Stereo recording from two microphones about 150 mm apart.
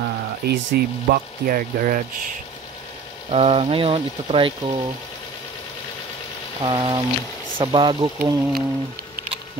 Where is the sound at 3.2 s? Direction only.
45° right (ahead or behind).